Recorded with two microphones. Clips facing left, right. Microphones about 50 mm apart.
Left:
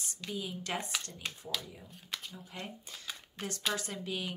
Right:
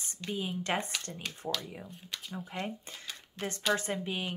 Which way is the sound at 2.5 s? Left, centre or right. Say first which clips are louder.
Right 6 dB; right.